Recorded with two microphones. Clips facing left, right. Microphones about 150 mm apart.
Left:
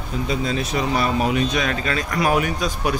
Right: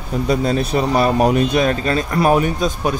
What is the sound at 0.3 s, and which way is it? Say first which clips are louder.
A man's voice: right 7 dB; 35° right (ahead or behind).